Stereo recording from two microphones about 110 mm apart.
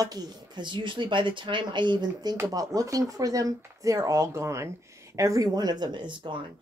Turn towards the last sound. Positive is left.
turn(degrees=-45)  # may be behind; listen again after turning